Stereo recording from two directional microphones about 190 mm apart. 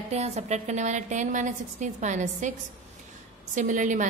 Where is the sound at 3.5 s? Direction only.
40° right (ahead or behind).